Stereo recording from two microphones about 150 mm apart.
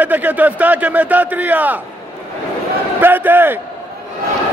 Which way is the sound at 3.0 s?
15° right (ahead or behind).